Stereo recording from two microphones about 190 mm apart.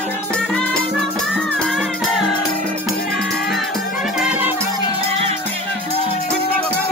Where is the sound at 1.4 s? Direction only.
Centre (ahead or behind).